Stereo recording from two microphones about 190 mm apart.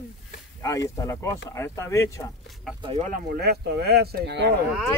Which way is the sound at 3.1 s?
55° right (ahead or behind).